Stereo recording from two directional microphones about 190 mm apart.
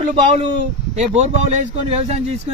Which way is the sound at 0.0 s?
35° right (ahead or behind).